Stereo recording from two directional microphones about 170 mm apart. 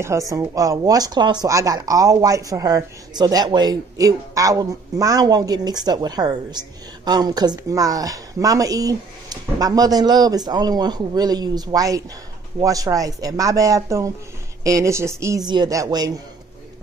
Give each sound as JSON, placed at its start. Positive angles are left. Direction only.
{"t": 0.0, "sound": "speech", "side_deg": -20}